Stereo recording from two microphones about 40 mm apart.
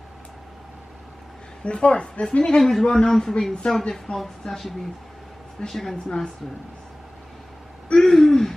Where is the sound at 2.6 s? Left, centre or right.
Centre.